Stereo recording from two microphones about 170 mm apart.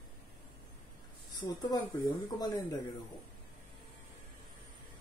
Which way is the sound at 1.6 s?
25° left (ahead or behind).